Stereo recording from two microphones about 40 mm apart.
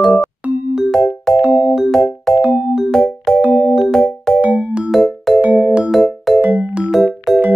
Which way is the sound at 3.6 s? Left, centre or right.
Centre.